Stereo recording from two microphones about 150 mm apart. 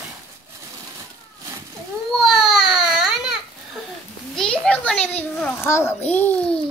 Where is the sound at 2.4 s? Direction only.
Centre (ahead or behind).